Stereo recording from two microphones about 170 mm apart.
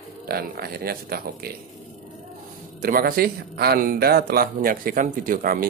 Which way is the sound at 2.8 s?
60° right (ahead or behind).